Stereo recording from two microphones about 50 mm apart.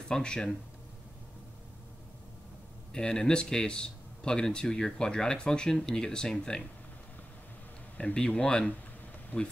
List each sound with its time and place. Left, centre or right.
0.1 s speech: centre
2.9 s speech: centre
8.0 s speech: left
9.3 s speech: left